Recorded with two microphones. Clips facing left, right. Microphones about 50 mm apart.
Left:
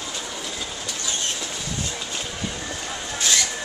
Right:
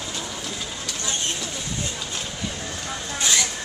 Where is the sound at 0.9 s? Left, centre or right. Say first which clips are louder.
Right 1 dB; right.